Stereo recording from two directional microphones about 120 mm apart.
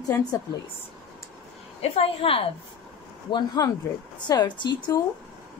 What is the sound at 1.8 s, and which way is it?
Speech, 55° left (ahead or behind).